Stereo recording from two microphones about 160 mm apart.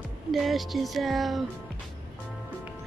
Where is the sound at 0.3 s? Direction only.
Centre (ahead or behind).